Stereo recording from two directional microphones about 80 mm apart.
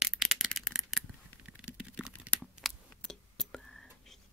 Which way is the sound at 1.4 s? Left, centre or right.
Centre.